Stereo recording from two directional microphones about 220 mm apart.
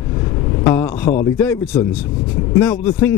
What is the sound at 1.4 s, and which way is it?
A man's voice, 10° left (ahead or behind).